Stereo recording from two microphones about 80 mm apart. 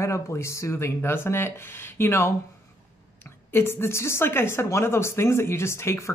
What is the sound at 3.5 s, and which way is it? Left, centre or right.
Speech, left.